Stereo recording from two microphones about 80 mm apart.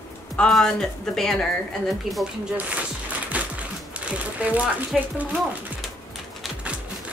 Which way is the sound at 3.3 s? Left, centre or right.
Centre.